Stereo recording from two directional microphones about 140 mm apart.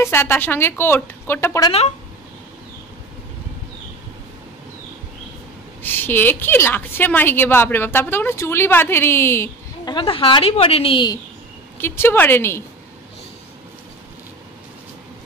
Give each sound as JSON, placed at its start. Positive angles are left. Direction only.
{"t": 0.0, "sound": "a woman's voice", "side_deg": 15}
{"t": 5.8, "sound": "a woman's voice", "side_deg": 15}
{"t": 9.8, "sound": "a woman's voice", "side_deg": 40}
{"t": 11.8, "sound": "a woman's voice", "side_deg": 15}